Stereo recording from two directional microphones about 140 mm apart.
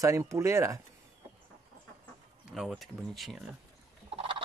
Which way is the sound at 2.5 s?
Centre (ahead or behind).